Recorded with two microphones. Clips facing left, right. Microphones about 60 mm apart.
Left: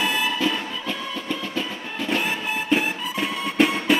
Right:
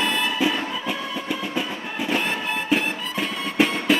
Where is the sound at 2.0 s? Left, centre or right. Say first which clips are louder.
Even; centre.